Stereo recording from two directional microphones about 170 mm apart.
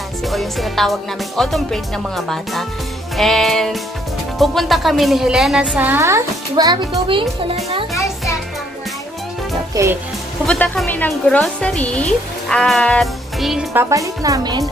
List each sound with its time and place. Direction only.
0.3 s a woman's voice: centre (ahead or behind); by 6.8 s 25° right (ahead or behind)
9.8 s a woman's voice: 20° right (ahead or behind)
10.4 s a woman's voice: 5° left (ahead or behind)
13.7 s a woman's voice: 20° right (ahead or behind)